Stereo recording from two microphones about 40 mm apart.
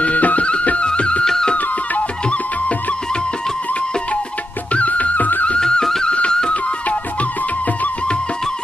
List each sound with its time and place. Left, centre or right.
0.0 s music: left
1.2 s music: centre
4.7 s music: left
5.6 s music: centre